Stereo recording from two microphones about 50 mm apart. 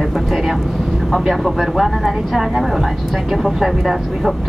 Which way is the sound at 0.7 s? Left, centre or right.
Centre.